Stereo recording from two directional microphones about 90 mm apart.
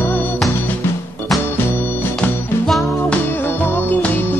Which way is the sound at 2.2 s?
20° left (ahead or behind).